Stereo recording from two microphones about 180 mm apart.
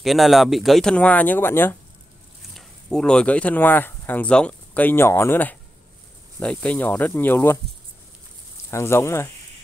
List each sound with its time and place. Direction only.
0.0 s speech: centre (ahead or behind)
8.6 s speech: 15° left (ahead or behind)